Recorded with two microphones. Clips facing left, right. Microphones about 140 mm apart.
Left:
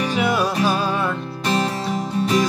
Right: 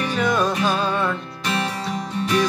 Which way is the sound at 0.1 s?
10° left (ahead or behind).